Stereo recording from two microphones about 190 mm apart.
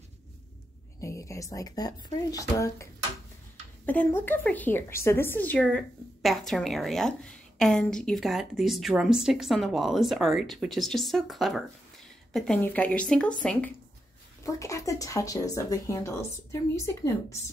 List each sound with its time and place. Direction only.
1.0 s a woman's voice: 15° left (ahead or behind)
14.4 s speech: 15° left (ahead or behind)